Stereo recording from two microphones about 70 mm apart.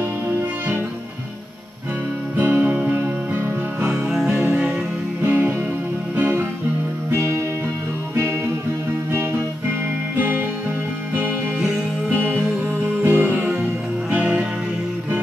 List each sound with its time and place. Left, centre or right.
2.3 s music: right
3.9 s music: centre
4.3 s music: right
7.1 s music: right
10.1 s music: right
12.1 s music: right
13.4 s music: centre